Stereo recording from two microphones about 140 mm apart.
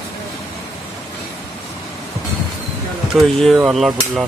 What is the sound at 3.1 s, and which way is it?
Speech, centre (ahead or behind).